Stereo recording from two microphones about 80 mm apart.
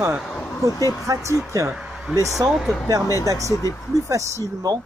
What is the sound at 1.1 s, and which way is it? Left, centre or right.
Speech, right.